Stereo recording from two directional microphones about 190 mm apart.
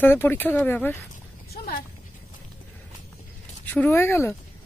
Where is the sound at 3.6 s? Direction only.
10° left (ahead or behind).